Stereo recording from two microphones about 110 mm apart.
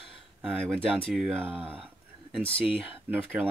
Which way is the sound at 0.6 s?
10° left (ahead or behind).